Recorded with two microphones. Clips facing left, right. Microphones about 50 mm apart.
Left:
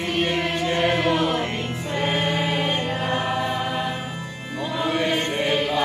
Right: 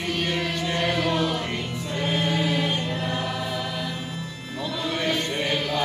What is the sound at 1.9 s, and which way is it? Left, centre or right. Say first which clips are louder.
Choir: left 2 dB; left.